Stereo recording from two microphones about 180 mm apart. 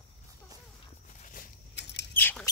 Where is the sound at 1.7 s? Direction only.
75° left (ahead or behind).